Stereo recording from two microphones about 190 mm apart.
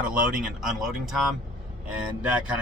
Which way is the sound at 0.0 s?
5° right (ahead or behind).